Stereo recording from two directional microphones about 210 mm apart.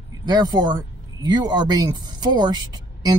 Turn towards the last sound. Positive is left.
turn(degrees=-20)  # may be behind; listen again after turning